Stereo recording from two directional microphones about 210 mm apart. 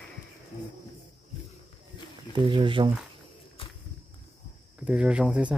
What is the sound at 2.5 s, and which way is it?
Speech, 25° right (ahead or behind).